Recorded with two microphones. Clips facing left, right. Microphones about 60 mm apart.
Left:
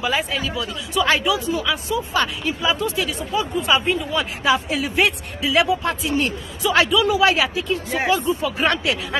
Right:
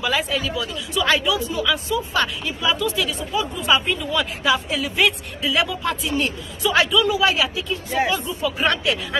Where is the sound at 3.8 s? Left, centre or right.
Left.